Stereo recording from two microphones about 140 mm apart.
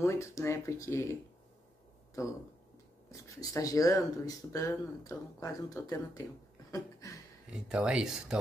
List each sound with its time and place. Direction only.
0.0 s speech: 20° left (ahead or behind)
2.2 s speech: 25° left (ahead or behind)
6.7 s a sound: 25° left (ahead or behind)
7.5 s speech: 5° right (ahead or behind)